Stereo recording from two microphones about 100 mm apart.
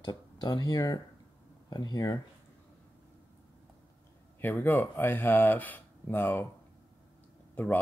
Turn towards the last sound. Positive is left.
turn(degrees=15)  # may be behind; listen again after turning